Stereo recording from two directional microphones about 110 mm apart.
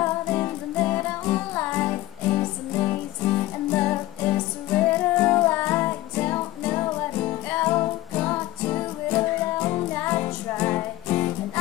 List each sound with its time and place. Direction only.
0.0 s music: 20° left (ahead or behind)